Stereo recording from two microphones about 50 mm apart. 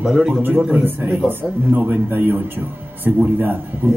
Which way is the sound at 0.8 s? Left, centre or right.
Right.